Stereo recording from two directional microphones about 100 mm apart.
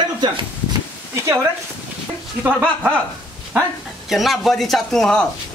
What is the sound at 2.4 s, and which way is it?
Speech, 15° right (ahead or behind).